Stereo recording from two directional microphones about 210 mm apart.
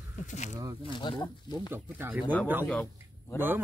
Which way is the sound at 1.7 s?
10° right (ahead or behind).